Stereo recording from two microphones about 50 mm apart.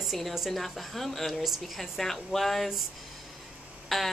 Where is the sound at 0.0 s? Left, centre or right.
Centre.